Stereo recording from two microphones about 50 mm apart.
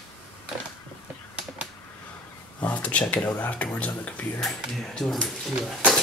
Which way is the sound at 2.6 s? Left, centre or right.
Left.